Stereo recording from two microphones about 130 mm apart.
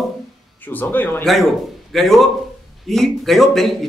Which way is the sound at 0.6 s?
15° left (ahead or behind).